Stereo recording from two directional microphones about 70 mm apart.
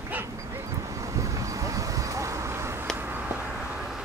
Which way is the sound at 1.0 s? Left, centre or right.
Right.